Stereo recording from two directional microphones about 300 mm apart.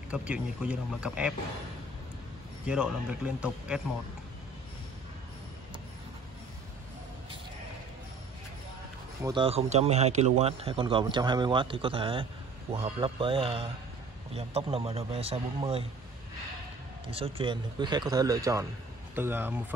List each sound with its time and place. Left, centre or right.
0.1 s speech: centre
2.6 s speech: centre
9.2 s a man's voice: centre
17.1 s speech: centre